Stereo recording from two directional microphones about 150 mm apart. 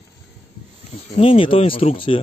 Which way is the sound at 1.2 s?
35° left (ahead or behind).